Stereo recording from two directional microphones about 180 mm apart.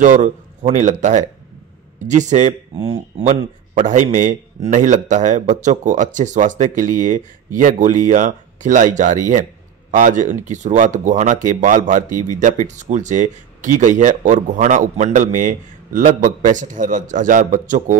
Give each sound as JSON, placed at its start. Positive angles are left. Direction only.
{"t": 0.0, "sound": "speech", "side_deg": -40}